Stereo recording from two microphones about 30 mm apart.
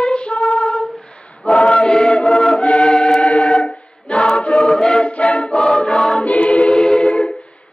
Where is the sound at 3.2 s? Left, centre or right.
Left.